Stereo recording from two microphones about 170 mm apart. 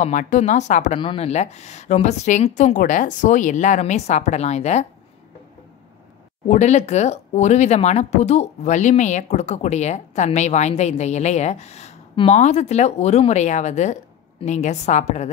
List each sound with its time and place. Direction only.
0.0 s speech: 45° left (ahead or behind)
0.9 s speech: 30° left (ahead or behind)
6.4 s speech: 45° left (ahead or behind)